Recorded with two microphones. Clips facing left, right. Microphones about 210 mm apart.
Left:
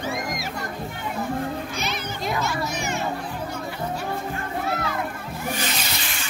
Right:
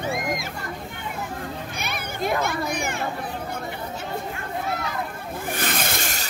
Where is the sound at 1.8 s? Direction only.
55° right (ahead or behind).